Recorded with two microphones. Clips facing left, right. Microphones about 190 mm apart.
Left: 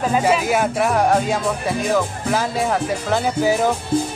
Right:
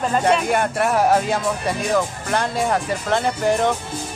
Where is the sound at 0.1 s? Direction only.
5° left (ahead or behind).